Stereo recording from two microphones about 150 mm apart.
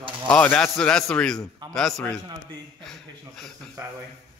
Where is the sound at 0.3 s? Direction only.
10° left (ahead or behind).